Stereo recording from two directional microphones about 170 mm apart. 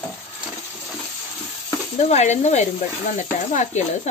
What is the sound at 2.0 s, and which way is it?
A woman's voice, 40° left (ahead or behind).